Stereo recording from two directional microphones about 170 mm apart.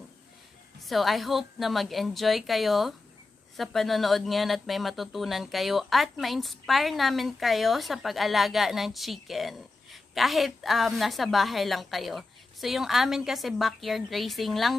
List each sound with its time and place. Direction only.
0.8 s speech: centre (ahead or behind)